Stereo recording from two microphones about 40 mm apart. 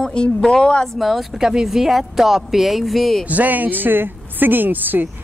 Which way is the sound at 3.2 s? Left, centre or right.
Right.